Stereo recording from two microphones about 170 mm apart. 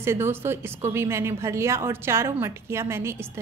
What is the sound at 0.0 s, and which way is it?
A woman's voice, 15° right (ahead or behind).